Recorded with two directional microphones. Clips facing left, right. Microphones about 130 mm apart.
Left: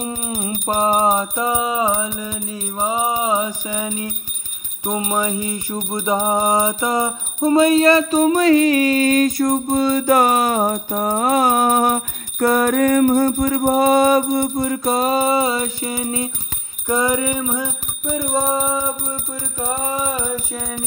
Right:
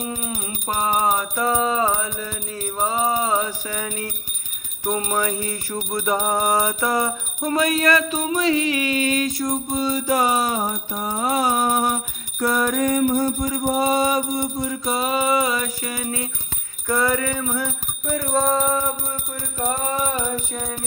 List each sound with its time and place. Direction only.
0.0 s music: 25° left (ahead or behind)
8.2 s music: 50° left (ahead or behind); by 20.6 s 10° left (ahead or behind)